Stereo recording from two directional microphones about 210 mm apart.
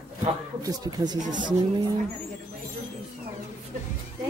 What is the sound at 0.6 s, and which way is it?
Speech, 20° right (ahead or behind).